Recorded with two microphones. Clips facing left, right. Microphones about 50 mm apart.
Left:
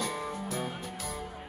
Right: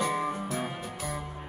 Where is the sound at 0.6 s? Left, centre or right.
Centre.